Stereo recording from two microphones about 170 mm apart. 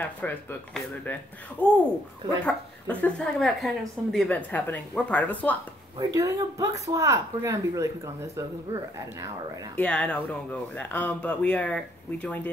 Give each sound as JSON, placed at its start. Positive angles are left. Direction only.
{"t": 0.0, "sound": "a woman's voice", "side_deg": 10}
{"t": 5.9, "sound": "speech", "side_deg": -20}
{"t": 9.8, "sound": "a woman's voice", "side_deg": 5}